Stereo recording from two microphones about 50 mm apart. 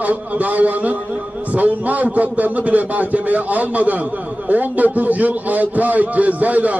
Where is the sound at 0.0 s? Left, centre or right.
Right.